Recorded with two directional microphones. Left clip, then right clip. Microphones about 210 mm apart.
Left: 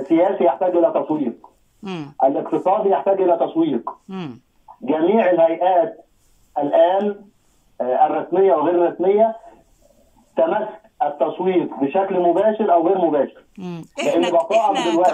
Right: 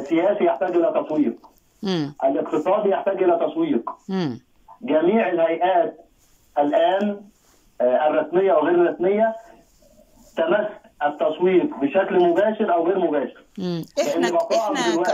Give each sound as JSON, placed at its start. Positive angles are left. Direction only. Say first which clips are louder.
{"t": 0.1, "sound": "a man's voice", "louder": "left 3 dB", "side_deg": 20}
{"t": 1.8, "sound": "a man's voice", "louder": "left 4 dB", "side_deg": 10}
{"t": 4.1, "sound": "speech", "louder": "right 6 dB", "side_deg": 5}
{"t": 4.8, "sound": "a man's voice", "louder": "left 3 dB", "side_deg": 20}
{"t": 7.7, "sound": "a man's voice", "louder": "left 1 dB", "side_deg": 20}
{"t": 10.3, "sound": "a man's voice", "louder": "left 2 dB", "side_deg": 20}